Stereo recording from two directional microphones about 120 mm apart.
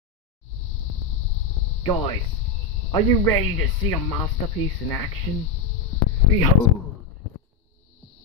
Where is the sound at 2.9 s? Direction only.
30° left (ahead or behind).